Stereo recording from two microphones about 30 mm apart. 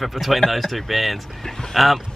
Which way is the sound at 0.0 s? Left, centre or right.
Centre.